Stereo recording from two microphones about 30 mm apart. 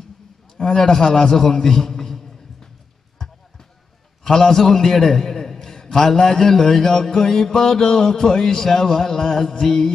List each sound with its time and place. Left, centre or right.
0.7 s a man's voice: centre
4.2 s a man's voice: centre